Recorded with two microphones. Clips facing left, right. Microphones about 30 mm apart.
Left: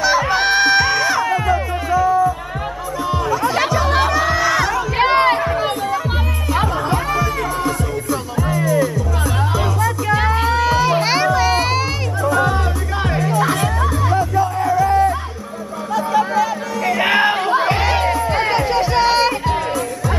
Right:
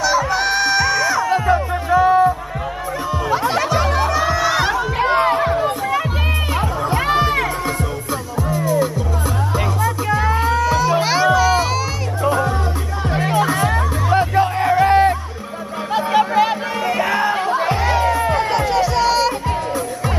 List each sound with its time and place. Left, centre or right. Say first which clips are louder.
0.0 s music: left 2 dB; left
1.3 s music: right 1 dB; right
4.9 s music: left 3 dB; left
7.1 s music: right 3 dB; right
8.4 s music: left 1 dB; left
10.0 s music: left 1 dB; left
11.0 s music: right 1 dB; left
14.1 s music: right 4 dB; right
15.9 s a sound: right 1 dB; right
17.0 s music: left 4 dB; left